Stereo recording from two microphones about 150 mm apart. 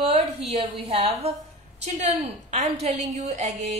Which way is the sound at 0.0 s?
40° right (ahead or behind).